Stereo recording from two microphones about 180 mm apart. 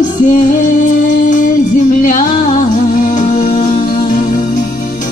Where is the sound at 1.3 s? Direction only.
45° left (ahead or behind).